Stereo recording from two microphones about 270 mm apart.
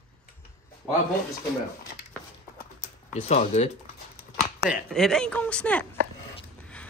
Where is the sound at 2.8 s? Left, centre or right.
Left.